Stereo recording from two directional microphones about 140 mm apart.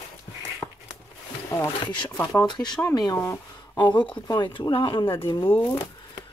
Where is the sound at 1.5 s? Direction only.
20° left (ahead or behind); by 5.5 s 35° left (ahead or behind).